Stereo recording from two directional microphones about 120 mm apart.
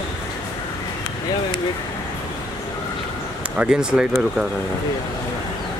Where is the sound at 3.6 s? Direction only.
5° right (ahead or behind).